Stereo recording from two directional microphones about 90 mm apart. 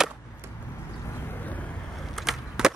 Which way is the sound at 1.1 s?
20° left (ahead or behind).